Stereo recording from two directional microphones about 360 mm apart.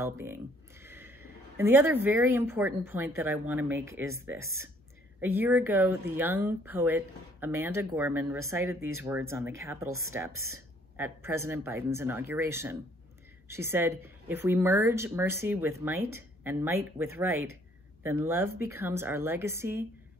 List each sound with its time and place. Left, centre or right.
0.0 s a sound: centre
1.6 s speech: centre
9.8 s speech: right
11.0 s speech: centre